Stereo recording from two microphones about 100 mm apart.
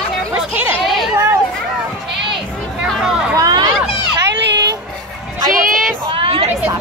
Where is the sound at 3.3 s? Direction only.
45° right (ahead or behind).